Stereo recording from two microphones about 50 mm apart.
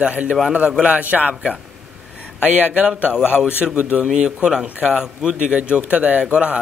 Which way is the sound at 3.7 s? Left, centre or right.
Right.